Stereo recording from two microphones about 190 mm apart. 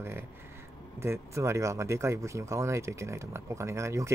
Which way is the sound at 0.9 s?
15° right (ahead or behind).